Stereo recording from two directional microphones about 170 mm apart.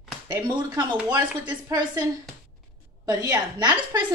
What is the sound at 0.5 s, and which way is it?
Speech, 20° right (ahead or behind).